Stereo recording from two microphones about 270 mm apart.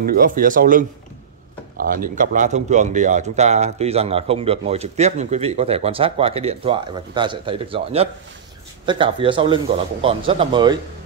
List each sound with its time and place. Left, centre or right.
0.0 s speech: right; by 10.8 s centre